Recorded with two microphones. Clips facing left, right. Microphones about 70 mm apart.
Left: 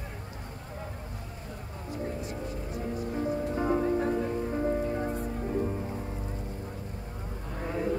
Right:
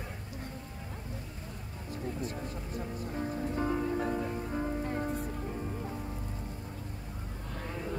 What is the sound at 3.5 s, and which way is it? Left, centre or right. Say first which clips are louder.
Music: left 4 dB; left.